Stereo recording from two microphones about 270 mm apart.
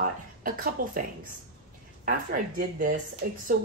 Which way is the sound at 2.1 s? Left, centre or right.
Right.